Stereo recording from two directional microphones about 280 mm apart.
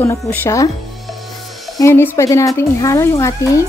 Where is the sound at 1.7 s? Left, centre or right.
Centre.